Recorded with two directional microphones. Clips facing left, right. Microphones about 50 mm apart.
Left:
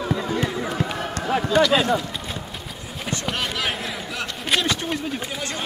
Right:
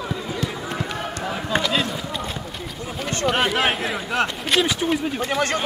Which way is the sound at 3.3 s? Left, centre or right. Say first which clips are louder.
Right 7 dB; right.